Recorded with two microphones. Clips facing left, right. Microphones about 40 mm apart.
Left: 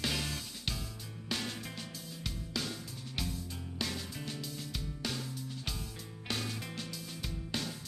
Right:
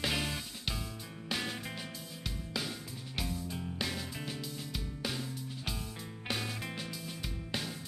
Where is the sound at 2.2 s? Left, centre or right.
Centre.